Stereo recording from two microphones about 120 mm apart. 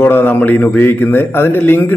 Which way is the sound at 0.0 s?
20° left (ahead or behind).